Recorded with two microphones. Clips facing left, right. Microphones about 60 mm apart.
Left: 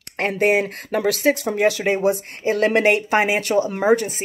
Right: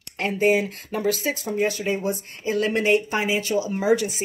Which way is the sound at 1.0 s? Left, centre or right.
Left.